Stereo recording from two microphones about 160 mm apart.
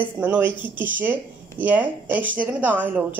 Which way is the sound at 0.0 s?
10° right (ahead or behind).